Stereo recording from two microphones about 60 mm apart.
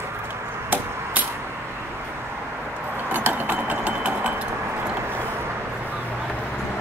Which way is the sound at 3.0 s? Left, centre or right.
Right.